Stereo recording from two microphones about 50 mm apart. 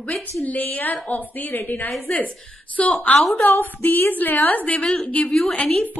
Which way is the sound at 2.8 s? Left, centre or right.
Centre.